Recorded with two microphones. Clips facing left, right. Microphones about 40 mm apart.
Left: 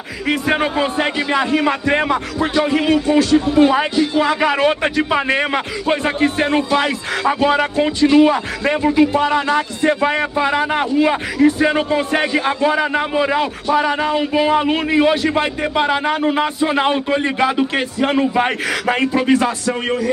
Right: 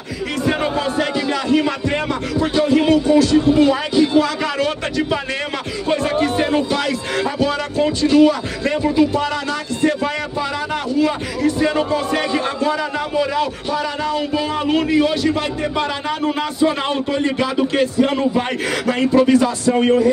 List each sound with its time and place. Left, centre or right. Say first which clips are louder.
0.5 s a man's voice: left 1 dB; left